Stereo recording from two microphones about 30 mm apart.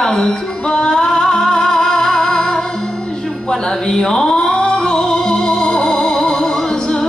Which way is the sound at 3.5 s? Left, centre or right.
Left.